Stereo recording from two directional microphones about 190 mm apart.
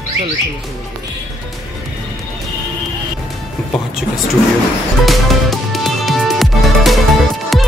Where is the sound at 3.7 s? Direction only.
Centre (ahead or behind).